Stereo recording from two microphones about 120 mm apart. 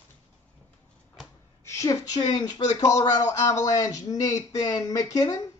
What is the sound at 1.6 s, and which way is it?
A woman's voice, 25° left (ahead or behind).